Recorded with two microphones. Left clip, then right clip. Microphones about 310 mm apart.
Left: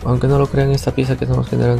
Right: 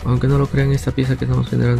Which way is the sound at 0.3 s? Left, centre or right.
Centre.